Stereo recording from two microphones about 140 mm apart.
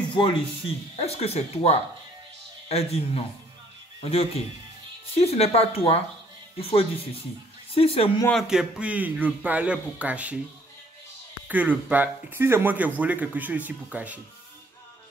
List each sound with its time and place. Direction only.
0.9 s speech: 45° left (ahead or behind)
8.3 s speech: centre (ahead or behind)
11.4 s speech: 10° right (ahead or behind)